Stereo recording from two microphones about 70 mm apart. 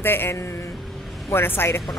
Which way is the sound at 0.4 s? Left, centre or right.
Left.